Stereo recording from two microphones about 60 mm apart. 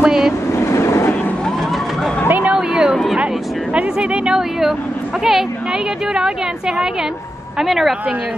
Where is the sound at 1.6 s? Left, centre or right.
Centre.